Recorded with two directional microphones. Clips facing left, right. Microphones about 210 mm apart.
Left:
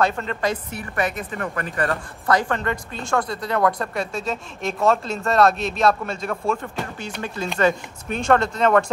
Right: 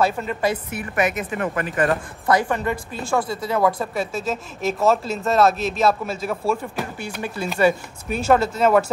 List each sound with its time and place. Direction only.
0.0 s a woman's voice: 10° right (ahead or behind)
0.9 s a woman's voice: 20° right (ahead or behind)